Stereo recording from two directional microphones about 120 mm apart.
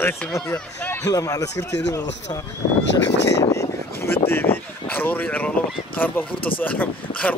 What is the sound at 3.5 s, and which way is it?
Vehicle, 20° left (ahead or behind).